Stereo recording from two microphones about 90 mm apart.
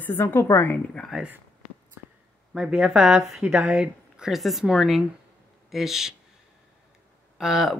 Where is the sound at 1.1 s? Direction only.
5° right (ahead or behind).